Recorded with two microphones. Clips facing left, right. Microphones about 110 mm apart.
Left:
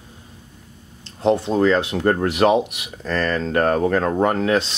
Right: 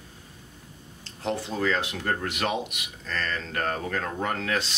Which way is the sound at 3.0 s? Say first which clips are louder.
Left 10 dB; 45° left (ahead or behind).